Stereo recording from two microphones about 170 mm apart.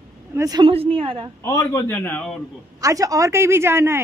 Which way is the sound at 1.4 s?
15° left (ahead or behind).